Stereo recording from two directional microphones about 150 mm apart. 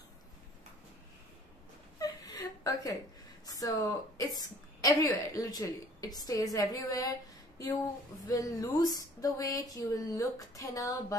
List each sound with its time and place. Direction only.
2.0 s whimper: 25° left (ahead or behind)
3.4 s speech: 25° left (ahead or behind)